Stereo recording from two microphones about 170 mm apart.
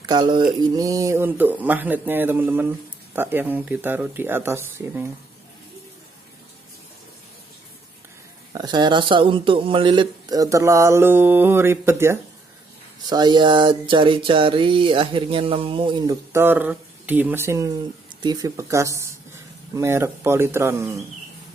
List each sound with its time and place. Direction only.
0.0 s speech: 25° right (ahead or behind)
8.5 s speech: 25° right (ahead or behind)
13.1 s speech: 25° right (ahead or behind)
16.3 s speech: 15° right (ahead or behind)